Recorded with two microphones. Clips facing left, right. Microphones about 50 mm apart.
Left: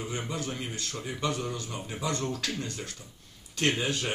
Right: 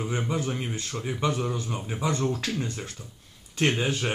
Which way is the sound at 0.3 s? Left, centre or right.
Centre.